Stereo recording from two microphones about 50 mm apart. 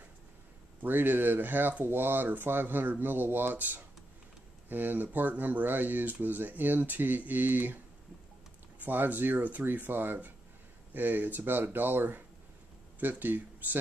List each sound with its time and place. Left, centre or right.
0.8 s speech: right
8.8 s speech: right
13.2 s speech: right